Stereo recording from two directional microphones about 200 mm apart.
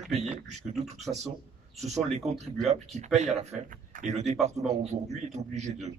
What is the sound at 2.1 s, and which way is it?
Speech, 35° right (ahead or behind).